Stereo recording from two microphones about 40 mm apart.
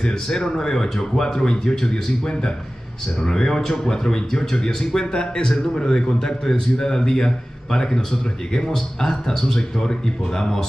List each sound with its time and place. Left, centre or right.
0.0 s speech: centre